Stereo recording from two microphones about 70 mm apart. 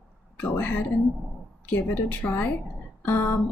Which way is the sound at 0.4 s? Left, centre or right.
Left.